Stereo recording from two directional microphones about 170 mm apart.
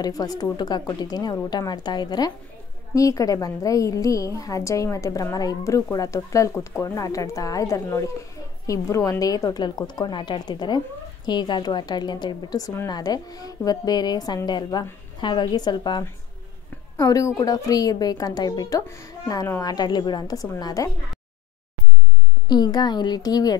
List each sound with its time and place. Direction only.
0.0 s a woman's voice: 20° left (ahead or behind)
22.5 s a woman's voice: 25° left (ahead or behind)